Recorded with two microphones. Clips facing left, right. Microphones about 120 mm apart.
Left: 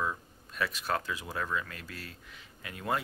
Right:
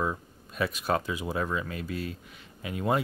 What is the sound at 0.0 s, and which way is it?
Speech, 20° right (ahead or behind).